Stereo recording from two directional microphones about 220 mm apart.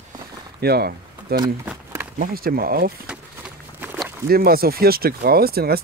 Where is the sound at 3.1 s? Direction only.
5° right (ahead or behind).